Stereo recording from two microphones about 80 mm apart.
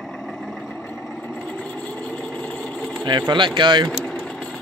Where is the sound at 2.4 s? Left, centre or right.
Left.